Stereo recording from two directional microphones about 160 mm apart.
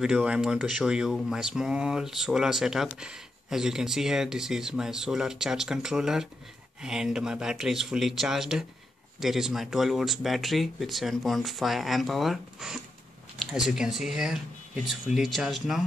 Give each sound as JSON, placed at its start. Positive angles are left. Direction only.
{"t": 0.0, "sound": "speech", "side_deg": -5}